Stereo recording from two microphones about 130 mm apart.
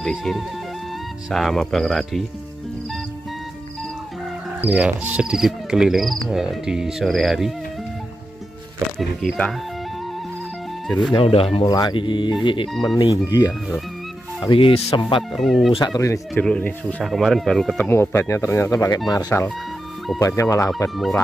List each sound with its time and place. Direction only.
0.0 s cricket: centre (ahead or behind)
4.6 s cricket: 10° right (ahead or behind)
8.9 s cricket: centre (ahead or behind)
11.1 s speech: 45° left (ahead or behind)
11.7 s speech: 35° left (ahead or behind)
13.5 s cricket: centre (ahead or behind)
14.5 s speech: 45° left (ahead or behind)
15.3 s cricket: centre (ahead or behind)
15.8 s speech: 25° left (ahead or behind)
16.3 s speech: 10° left (ahead or behind)
17.0 s cricket: centre (ahead or behind)
17.8 s speech: 20° left (ahead or behind)